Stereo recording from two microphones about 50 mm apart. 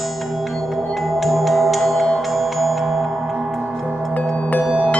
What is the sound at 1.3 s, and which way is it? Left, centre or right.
Music, centre.